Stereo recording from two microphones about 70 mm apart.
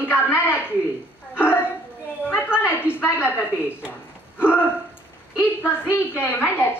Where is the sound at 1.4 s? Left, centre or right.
Left.